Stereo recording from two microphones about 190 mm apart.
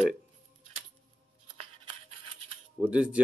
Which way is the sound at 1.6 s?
30° right (ahead or behind).